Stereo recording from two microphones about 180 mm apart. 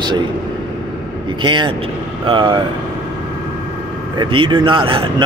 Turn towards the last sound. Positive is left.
turn(degrees=-30)  # may be behind; listen again after turning